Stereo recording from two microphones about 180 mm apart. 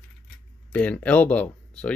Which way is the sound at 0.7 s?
5° left (ahead or behind).